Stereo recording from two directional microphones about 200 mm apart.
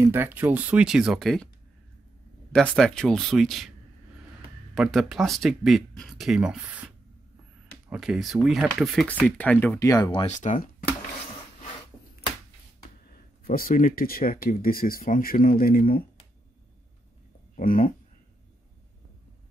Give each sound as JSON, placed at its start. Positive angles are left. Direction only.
{"t": 0.0, "sound": "speech", "side_deg": -10}
{"t": 2.5, "sound": "speech", "side_deg": 5}
{"t": 4.7, "sound": "speech", "side_deg": 0}
{"t": 7.9, "sound": "speech", "side_deg": -5}
{"t": 10.2, "sound": "speech", "side_deg": 35}
{"t": 13.1, "sound": "speech", "side_deg": 45}
{"t": 17.6, "sound": "speech", "side_deg": 40}